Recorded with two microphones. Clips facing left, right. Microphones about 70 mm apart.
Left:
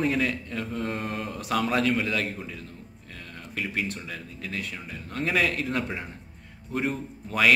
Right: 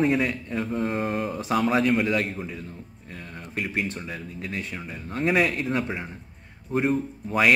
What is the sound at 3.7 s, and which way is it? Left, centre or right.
Speech, right.